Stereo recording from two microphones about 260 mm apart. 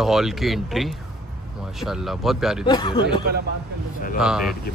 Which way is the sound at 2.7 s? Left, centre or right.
Centre.